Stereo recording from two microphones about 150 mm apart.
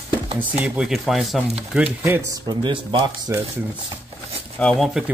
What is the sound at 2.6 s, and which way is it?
Speech, 35° right (ahead or behind).